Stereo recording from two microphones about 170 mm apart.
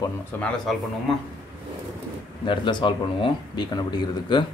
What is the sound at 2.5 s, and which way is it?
Speech, 30° left (ahead or behind).